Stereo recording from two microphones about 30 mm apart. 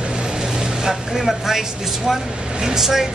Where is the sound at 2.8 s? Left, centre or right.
Centre.